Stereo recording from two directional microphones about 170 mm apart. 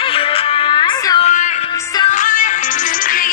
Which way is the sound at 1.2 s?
45° left (ahead or behind).